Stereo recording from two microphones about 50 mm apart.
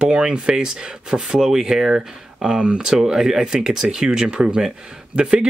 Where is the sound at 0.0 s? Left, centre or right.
Right.